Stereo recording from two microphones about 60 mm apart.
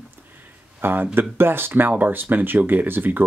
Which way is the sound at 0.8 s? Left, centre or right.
Right.